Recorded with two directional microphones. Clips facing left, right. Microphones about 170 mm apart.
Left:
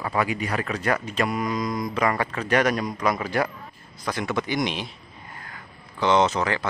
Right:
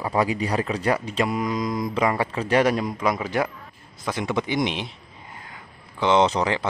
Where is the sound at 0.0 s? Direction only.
25° right (ahead or behind).